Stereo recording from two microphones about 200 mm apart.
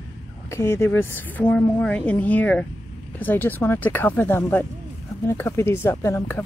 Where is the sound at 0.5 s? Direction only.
15° left (ahead or behind).